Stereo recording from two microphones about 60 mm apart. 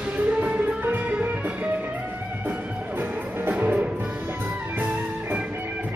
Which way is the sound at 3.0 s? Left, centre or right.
Right.